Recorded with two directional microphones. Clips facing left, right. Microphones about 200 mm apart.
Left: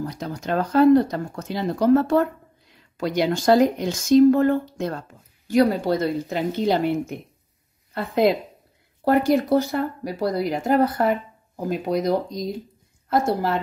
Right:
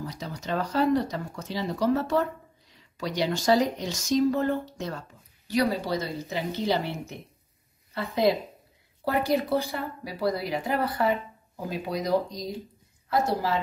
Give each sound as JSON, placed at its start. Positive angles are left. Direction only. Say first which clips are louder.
{"t": 0.0, "sound": "speech", "louder": "left 6 dB", "side_deg": 50}